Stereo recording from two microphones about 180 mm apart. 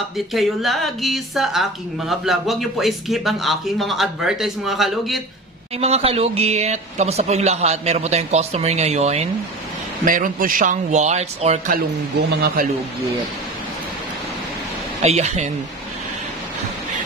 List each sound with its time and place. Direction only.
0.3 s a woman's voice: centre (ahead or behind)
5.8 s speech: 35° right (ahead or behind)
10.0 s speech: 50° right (ahead or behind)
11.7 s speech: 60° right (ahead or behind)
15.0 s speech: 40° right (ahead or behind)